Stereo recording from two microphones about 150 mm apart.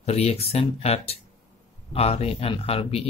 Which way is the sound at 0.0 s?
45° left (ahead or behind).